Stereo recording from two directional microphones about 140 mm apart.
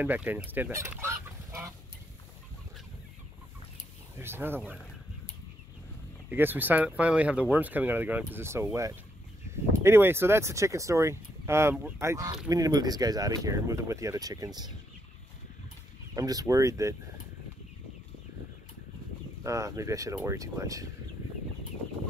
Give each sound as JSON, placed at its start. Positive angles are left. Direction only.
{"t": 0.0, "sound": "speech", "side_deg": -10}
{"t": 4.2, "sound": "speech", "side_deg": -15}
{"t": 6.3, "sound": "speech", "side_deg": -15}
{"t": 9.7, "sound": "speech", "side_deg": -15}
{"t": 16.2, "sound": "speech", "side_deg": -25}
{"t": 19.4, "sound": "speech", "side_deg": -20}